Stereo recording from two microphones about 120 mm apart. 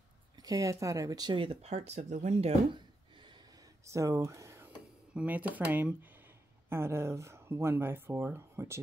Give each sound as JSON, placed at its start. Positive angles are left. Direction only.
{"t": 0.4, "sound": "speech", "side_deg": -30}
{"t": 2.7, "sound": "a sound", "side_deg": -40}
{"t": 3.8, "sound": "speech", "side_deg": -25}
{"t": 4.6, "sound": "speech", "side_deg": -15}